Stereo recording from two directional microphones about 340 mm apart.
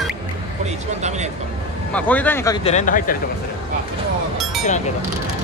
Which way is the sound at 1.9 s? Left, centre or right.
Centre.